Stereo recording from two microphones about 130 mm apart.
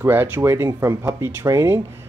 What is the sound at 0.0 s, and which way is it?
Speech, 15° right (ahead or behind).